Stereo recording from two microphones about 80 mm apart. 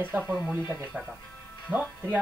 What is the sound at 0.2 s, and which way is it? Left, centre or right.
Speech, centre.